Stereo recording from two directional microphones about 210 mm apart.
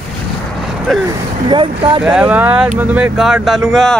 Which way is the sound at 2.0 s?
5° right (ahead or behind).